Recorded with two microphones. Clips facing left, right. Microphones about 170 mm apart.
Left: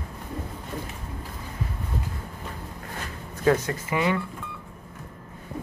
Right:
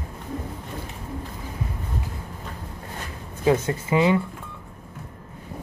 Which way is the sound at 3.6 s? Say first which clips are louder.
Right 5 dB; 25° right (ahead or behind).